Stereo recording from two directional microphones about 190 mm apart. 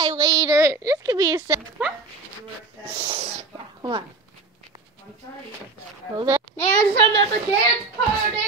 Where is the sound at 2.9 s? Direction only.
25° right (ahead or behind).